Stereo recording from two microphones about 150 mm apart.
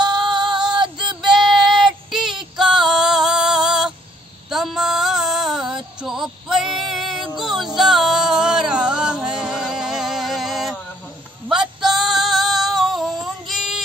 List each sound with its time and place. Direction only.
0.4 s music: 5° right (ahead or behind)
0.7 s music: 30° right (ahead or behind)
1.0 s female singing: 5° right (ahead or behind)
4.5 s a sound: centre (ahead or behind)
6.0 s music: 5° right (ahead or behind)
11.4 s female singing: 5° right (ahead or behind)